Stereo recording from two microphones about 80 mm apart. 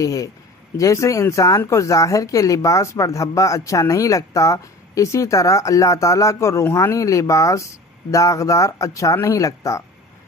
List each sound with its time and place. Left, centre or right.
0.0 s speech: left